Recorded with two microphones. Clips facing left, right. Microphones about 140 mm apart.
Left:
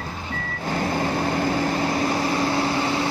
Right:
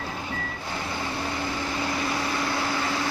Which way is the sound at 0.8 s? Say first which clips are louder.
Left 8 dB; 45° left (ahead or behind).